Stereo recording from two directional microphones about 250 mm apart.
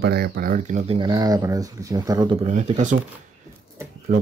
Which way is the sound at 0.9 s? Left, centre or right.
Centre.